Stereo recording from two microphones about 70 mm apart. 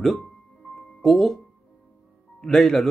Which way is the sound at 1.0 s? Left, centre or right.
Centre.